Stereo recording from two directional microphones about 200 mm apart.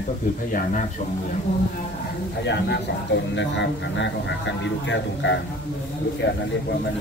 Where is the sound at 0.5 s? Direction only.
40° left (ahead or behind).